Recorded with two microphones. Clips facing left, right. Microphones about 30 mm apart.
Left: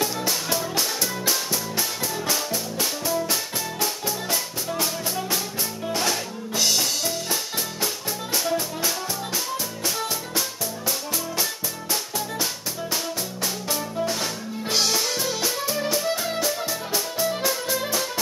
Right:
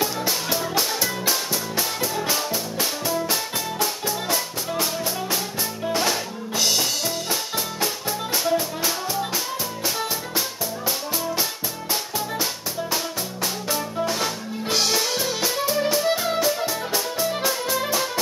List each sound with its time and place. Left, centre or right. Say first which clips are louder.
0.0 s music: right 1 dB; centre
5.9 s music: right 2 dB; centre
12.9 s music: right 1 dB; centre